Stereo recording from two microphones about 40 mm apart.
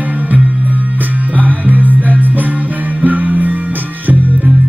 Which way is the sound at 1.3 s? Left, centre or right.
Right.